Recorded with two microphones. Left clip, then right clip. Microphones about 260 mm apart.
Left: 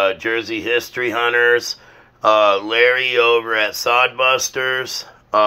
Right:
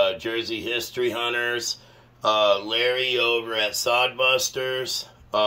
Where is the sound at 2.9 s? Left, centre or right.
Left.